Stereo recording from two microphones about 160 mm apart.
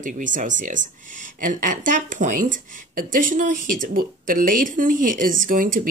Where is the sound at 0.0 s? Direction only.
55° right (ahead or behind).